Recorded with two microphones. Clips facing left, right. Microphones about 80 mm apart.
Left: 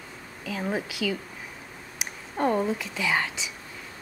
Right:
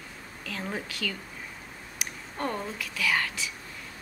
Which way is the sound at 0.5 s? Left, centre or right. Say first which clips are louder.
Left 5 dB; centre.